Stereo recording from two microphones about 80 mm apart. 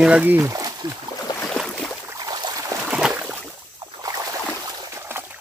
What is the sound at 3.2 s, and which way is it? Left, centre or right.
Boat, right.